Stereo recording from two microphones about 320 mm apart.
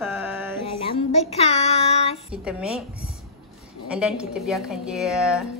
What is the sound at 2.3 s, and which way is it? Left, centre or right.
Speech, centre.